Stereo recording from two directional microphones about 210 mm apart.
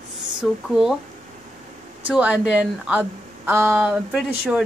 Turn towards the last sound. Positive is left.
turn(degrees=-5)  # may be behind; listen again after turning